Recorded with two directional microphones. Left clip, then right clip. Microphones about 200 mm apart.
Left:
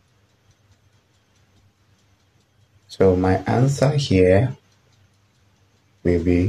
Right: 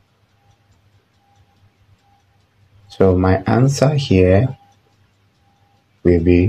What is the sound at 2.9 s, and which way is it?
Speech, 15° right (ahead or behind).